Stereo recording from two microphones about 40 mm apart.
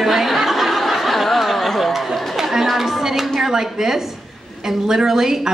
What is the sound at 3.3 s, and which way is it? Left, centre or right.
A woman's voice, centre.